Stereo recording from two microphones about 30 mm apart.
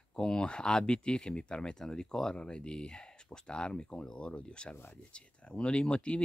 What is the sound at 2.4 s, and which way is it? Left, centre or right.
Speech, left.